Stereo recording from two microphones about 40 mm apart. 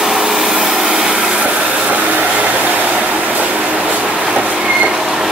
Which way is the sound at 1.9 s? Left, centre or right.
Right.